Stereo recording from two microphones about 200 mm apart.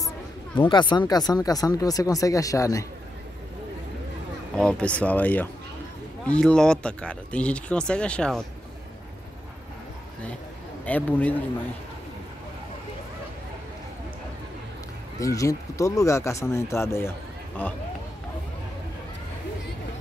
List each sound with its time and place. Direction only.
0.6 s speech: 25° left (ahead or behind)
4.6 s speech: 5° left (ahead or behind)
10.9 s speech: 10° left (ahead or behind)
15.1 s speech: 15° left (ahead or behind)